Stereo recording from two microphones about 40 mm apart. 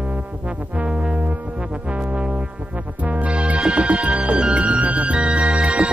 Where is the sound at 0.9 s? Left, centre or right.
Right.